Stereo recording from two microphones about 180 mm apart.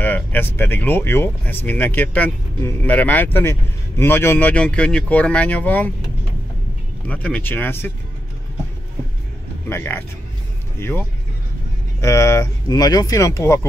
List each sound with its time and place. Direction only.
0.0 s speech: 10° left (ahead or behind)
7.1 s speech: 10° left (ahead or behind)
9.7 s speech: 10° left (ahead or behind)